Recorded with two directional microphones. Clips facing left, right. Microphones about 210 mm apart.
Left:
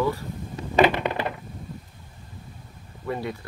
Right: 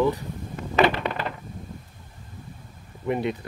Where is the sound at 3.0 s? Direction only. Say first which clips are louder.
Right 4 dB; 20° right (ahead or behind).